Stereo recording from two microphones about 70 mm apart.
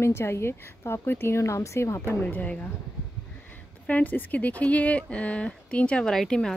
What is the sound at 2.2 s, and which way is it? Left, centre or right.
Speech, left.